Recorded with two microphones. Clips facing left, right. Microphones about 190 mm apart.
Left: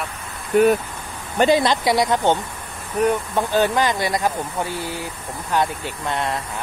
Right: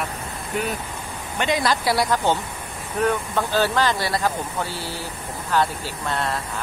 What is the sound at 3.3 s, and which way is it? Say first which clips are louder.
Speech: left 2 dB; 20° left (ahead or behind).